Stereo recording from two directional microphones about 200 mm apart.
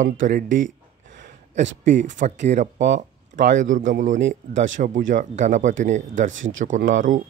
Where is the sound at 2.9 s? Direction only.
60° right (ahead or behind).